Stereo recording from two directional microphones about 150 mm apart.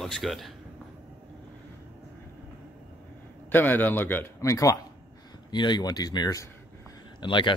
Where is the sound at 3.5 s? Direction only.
15° left (ahead or behind); by 7.6 s 30° left (ahead or behind).